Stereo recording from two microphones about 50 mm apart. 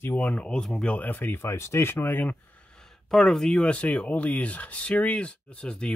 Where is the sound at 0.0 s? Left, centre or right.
Left.